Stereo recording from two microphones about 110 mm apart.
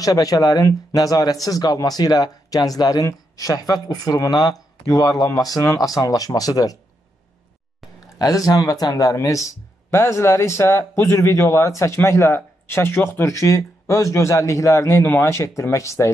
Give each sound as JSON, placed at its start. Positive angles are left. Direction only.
{"t": 0.0, "sound": "speech", "side_deg": 30}
{"t": 8.2, "sound": "speech", "side_deg": 35}